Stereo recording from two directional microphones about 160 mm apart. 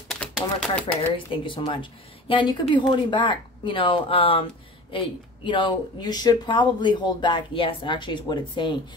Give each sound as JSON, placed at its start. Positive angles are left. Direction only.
{"t": 0.1, "sound": "speech", "side_deg": 5}
{"t": 1.1, "sound": "speech", "side_deg": 30}